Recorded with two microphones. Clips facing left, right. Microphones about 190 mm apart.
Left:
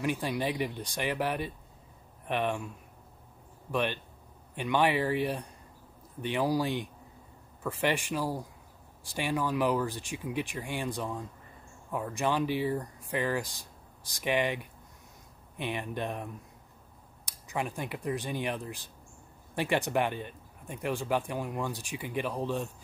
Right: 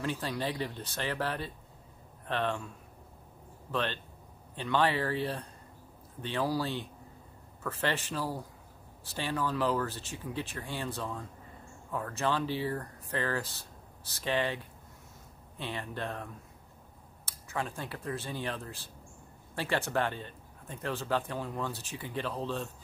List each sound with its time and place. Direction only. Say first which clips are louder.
0.0 s speech: left 3 dB; 15° left (ahead or behind)
3.7 s speech: left 3 dB; 15° left (ahead or behind)